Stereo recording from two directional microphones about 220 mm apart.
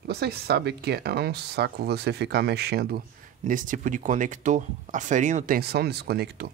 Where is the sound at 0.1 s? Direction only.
50° right (ahead or behind).